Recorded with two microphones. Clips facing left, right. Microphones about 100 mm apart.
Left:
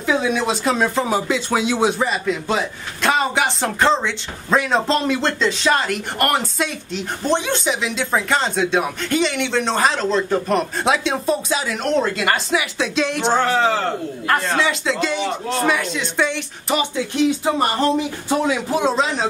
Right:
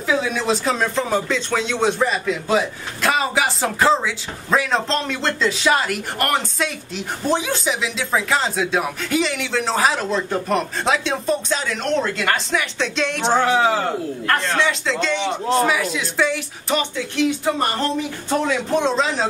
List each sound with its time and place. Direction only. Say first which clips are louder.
0.0 s speech: left 2 dB; centre (ahead or behind)
13.4 s speech: right 2 dB; 10° right (ahead or behind)
14.2 s speech: left 1 dB; 5° left (ahead or behind)
16.9 s music: left 2 dB; 20° left (ahead or behind)
18.3 s speech: even; 5° left (ahead or behind)